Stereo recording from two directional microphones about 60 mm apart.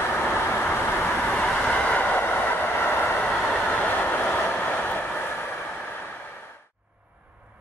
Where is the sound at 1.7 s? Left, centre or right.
Left.